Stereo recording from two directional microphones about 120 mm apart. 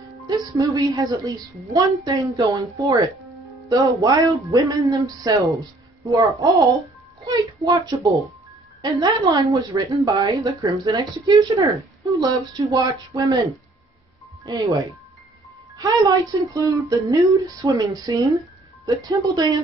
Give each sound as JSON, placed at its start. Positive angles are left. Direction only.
{"t": 0.3, "sound": "a woman's voice", "side_deg": -30}
{"t": 14.4, "sound": "a woman's voice", "side_deg": -30}